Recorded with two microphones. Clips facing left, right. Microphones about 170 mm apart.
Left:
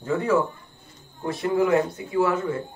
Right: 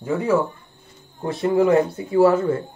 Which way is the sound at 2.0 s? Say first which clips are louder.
Right 7 dB; 35° right (ahead or behind).